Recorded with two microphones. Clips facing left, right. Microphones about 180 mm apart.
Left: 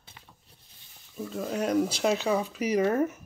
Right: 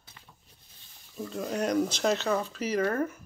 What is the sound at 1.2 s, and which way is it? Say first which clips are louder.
Speech: left 1 dB; centre (ahead or behind).